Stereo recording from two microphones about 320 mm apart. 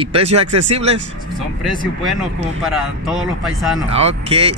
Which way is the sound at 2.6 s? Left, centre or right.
Centre.